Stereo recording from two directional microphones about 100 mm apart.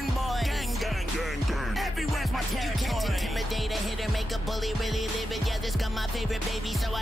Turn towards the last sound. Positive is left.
turn(degrees=0)  # may be behind; listen again after turning